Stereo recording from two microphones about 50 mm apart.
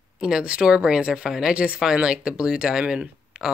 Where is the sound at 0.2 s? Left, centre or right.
Centre.